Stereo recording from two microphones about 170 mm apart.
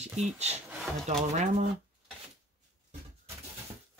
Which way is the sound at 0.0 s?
40° right (ahead or behind).